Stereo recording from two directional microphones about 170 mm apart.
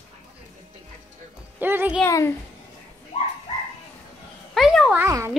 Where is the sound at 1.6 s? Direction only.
10° right (ahead or behind).